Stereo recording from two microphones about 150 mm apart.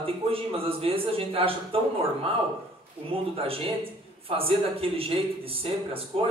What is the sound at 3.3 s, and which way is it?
A man's voice, 40° right (ahead or behind).